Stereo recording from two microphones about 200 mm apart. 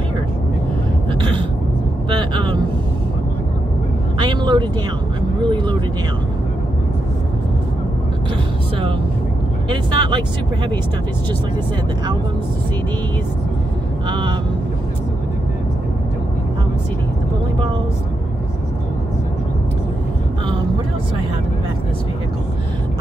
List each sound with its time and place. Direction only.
2.0 s vehicle: 25° right (ahead or behind)
4.2 s vehicle: 25° right (ahead or behind)
9.7 s vehicle: 20° right (ahead or behind)
14.0 s speech: 25° right (ahead or behind)